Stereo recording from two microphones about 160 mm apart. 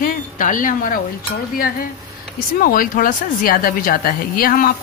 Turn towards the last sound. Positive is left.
turn(degrees=60)  # may be behind; listen again after turning